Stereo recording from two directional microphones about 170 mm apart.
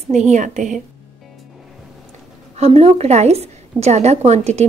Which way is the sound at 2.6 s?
40° right (ahead or behind).